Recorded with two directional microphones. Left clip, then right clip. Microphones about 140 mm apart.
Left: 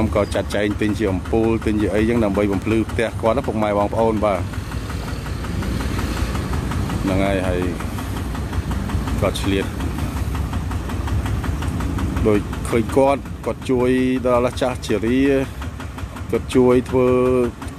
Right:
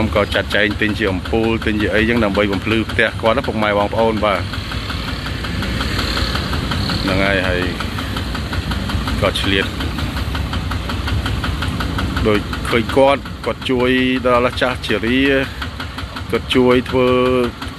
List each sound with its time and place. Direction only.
0.0 s speech: 20° left (ahead or behind)
7.1 s speech: 25° left (ahead or behind)
9.2 s speech: 25° left (ahead or behind)
12.3 s speech: 20° left (ahead or behind)